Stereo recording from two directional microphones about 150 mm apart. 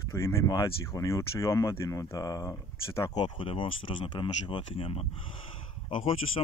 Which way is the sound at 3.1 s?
35° left (ahead or behind).